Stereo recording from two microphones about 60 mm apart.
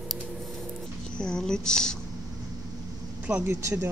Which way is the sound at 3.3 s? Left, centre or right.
Centre.